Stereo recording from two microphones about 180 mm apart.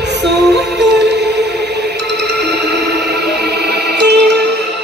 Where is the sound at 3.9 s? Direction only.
70° right (ahead or behind).